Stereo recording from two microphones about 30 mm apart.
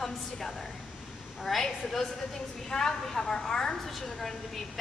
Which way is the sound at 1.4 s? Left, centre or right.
Centre.